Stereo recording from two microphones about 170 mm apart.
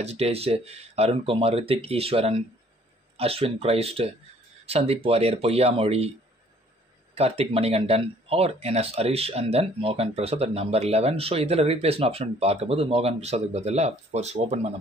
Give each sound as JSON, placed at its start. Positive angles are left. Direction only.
{"t": 0.0, "sound": "speech", "side_deg": -40}
{"t": 7.2, "sound": "speech", "side_deg": -35}